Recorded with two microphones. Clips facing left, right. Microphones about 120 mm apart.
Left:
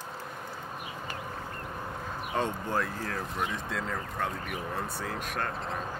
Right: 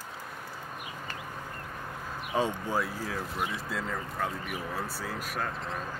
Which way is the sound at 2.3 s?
10° right (ahead or behind).